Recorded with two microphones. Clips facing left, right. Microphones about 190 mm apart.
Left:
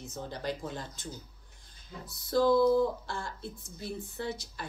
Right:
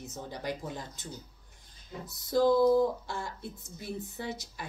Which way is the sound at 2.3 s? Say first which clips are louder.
Right 1 dB; 20° right (ahead or behind).